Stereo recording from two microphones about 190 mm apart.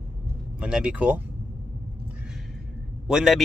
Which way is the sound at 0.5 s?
5° right (ahead or behind).